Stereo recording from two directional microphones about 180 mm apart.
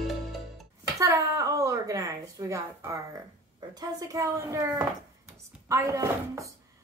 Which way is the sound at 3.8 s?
20° right (ahead or behind).